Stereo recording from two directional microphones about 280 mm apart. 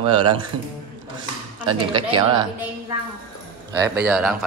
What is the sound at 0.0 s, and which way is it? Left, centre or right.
Speech, centre.